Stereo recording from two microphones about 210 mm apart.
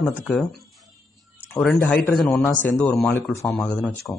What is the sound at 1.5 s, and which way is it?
A man's voice, 5° left (ahead or behind).